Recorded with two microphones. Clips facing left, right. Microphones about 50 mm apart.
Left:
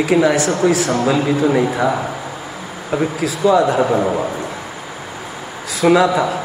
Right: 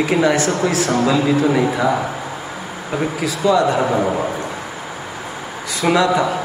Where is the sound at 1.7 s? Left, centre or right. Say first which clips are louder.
Even; centre.